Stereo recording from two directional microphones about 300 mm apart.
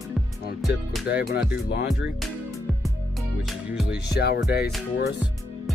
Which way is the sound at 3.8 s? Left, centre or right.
Left.